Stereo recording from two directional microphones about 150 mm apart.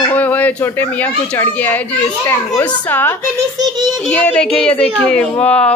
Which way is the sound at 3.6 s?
30° right (ahead or behind).